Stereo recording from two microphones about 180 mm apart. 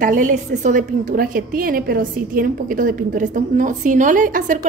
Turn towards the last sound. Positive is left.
turn(degrees=-45)  # may be behind; listen again after turning